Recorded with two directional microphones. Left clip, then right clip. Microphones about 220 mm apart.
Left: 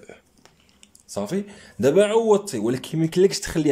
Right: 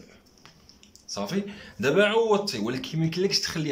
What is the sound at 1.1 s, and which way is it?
Speech, 30° left (ahead or behind).